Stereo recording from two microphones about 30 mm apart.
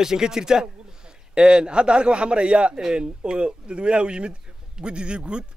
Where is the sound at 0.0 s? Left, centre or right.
Centre.